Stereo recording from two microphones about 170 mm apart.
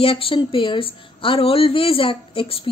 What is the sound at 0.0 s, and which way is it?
A woman's voice, 35° left (ahead or behind).